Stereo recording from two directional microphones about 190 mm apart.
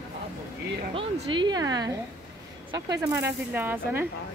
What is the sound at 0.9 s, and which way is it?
A woman's voice, 25° right (ahead or behind).